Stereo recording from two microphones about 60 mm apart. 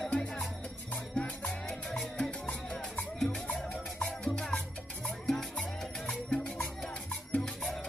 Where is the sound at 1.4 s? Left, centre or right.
Centre.